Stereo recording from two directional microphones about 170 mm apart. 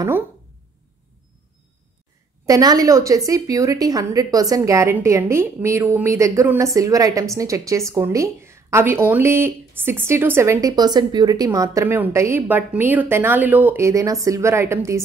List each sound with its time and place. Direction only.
2.4 s a woman's voice: 20° right (ahead or behind)